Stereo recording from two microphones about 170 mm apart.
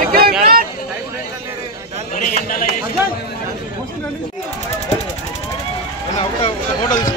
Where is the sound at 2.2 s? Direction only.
55° left (ahead or behind).